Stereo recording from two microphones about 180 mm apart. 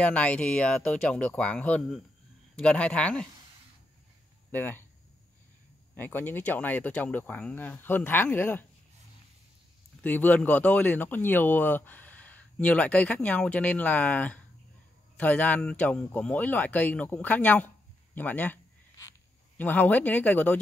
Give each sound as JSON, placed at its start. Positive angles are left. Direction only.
{"t": 0.0, "sound": "speech", "side_deg": 5}
{"t": 4.5, "sound": "speech", "side_deg": 10}
{"t": 5.9, "sound": "speech", "side_deg": 10}
{"t": 10.0, "sound": "speech", "side_deg": 10}
{"t": 18.1, "sound": "a sound", "side_deg": 10}